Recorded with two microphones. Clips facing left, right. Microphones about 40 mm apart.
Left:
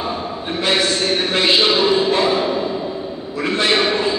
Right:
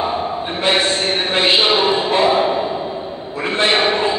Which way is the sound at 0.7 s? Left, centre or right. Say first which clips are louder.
Right 1 dB; right.